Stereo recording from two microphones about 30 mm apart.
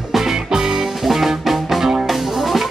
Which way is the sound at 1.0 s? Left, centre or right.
Centre.